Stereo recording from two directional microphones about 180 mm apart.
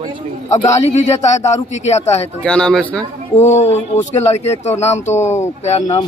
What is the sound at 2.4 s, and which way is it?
Speech, 5° left (ahead or behind).